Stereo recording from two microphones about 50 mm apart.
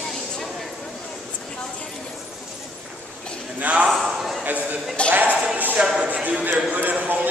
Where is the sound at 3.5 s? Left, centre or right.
Right.